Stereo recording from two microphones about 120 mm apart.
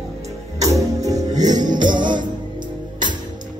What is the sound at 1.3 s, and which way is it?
Music, 90° right.